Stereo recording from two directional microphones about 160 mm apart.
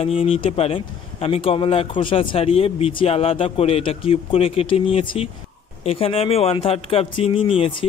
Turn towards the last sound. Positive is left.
turn(degrees=35)  # may be behind; listen again after turning